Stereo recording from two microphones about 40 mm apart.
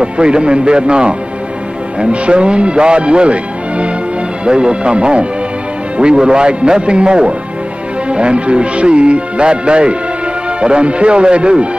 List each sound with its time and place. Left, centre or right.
0.0 s a man's voice: right